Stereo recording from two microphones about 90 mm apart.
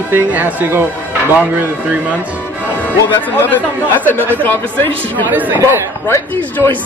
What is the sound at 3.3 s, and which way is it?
Speech, 20° left (ahead or behind).